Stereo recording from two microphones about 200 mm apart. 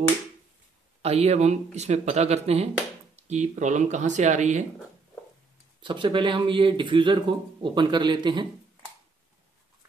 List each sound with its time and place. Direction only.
1.0 s speech: 30° right (ahead or behind)
5.8 s speech: 25° right (ahead or behind)